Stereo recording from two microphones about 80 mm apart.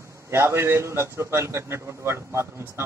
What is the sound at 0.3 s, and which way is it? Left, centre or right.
A man's voice, right.